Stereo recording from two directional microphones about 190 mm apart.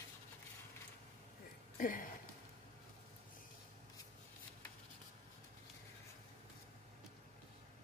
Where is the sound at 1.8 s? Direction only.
45° left (ahead or behind).